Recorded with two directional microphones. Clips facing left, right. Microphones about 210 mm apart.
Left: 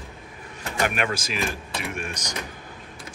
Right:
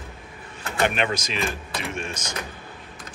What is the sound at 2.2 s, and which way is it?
Speech, 35° left (ahead or behind).